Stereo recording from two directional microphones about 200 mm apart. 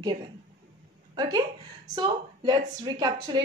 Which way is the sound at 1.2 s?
20° right (ahead or behind).